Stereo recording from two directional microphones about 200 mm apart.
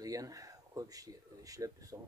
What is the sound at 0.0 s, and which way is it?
Speech, 15° right (ahead or behind).